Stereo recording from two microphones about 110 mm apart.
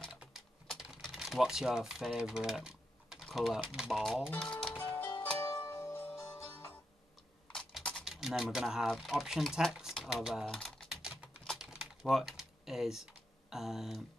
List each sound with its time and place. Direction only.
0.1 s typing: 10° right (ahead or behind)
1.0 s speech: 5° right (ahead or behind)
4.7 s music: 20° left (ahead or behind)
7.5 s speech: 5° left (ahead or behind)
10.5 s typing: 5° left (ahead or behind)